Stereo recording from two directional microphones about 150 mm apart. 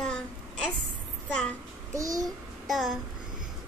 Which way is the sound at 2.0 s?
25° right (ahead or behind).